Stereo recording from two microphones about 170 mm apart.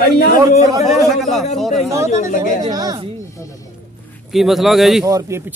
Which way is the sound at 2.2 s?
55° left (ahead or behind).